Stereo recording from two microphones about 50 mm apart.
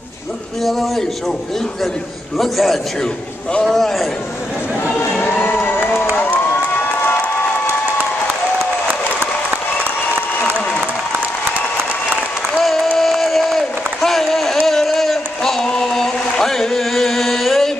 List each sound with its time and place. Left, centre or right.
0.7 s a man's voice: centre
2.3 s a man's voice: centre
6.1 s cheering: left
8.8 s applause: right
12.9 s a sound: centre